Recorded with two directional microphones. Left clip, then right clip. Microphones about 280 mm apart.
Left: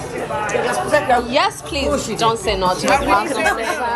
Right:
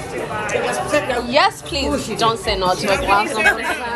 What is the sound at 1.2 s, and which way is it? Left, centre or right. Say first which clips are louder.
A woman's voice: right 2 dB; centre.